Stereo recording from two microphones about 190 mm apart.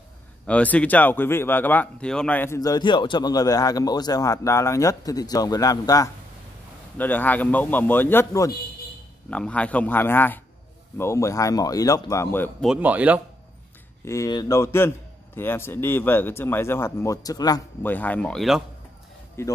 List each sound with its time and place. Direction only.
0.5 s speech: 5° left (ahead or behind)
12.6 s speech: 5° right (ahead or behind)
14.0 s speech: 15° left (ahead or behind)
17.9 s speech: 10° left (ahead or behind)
19.4 s speech: 15° left (ahead or behind)